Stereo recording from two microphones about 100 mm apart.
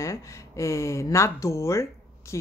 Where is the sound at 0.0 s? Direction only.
30° left (ahead or behind).